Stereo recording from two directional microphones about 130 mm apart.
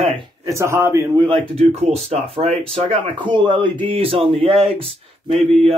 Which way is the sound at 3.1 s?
35° right (ahead or behind).